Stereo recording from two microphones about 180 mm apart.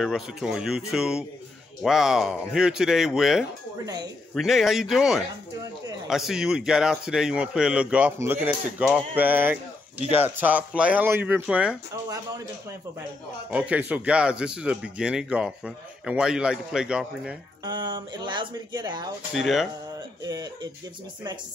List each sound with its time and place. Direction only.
0.0 s speech: centre (ahead or behind)
3.8 s speech: 20° right (ahead or behind)
4.4 s speech: centre (ahead or behind)
13.5 s speech: 5° right (ahead or behind)
17.6 s speech: 25° right (ahead or behind)
19.3 s speech: centre (ahead or behind)